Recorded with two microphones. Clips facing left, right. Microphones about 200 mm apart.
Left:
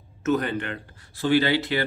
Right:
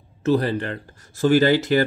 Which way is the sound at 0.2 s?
35° right (ahead or behind).